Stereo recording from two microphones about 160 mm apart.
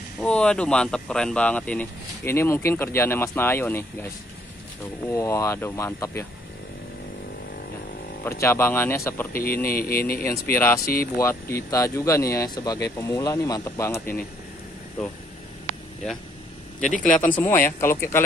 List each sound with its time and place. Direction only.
0.2 s speech: 5° left (ahead or behind)
5.1 s speech: 20° left (ahead or behind)
8.2 s speech: 15° left (ahead or behind)
9.3 s speech: 65° left (ahead or behind)
10.2 s speech: 15° left (ahead or behind)
17.0 s speech: 10° left (ahead or behind)